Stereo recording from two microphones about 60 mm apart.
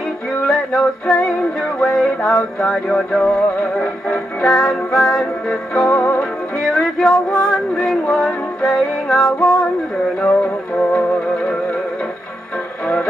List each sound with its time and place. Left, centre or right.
0.5 s music: centre
5.9 s music: left
6.6 s music: centre
10.2 s music: left